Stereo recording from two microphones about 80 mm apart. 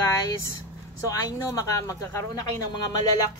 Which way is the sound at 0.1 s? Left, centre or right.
Left.